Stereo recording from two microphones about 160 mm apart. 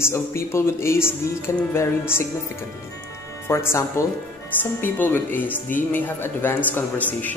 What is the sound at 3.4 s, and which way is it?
Speech, 15° left (ahead or behind).